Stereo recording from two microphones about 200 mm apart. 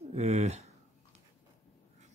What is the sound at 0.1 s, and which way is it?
Speech, 35° right (ahead or behind).